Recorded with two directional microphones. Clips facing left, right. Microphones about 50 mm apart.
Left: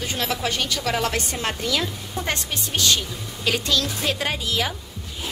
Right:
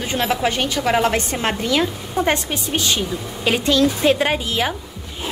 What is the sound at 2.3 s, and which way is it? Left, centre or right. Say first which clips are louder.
A woman's voice: right 6 dB; right.